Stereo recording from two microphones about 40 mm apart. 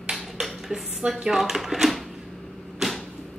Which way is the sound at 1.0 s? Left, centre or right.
Centre.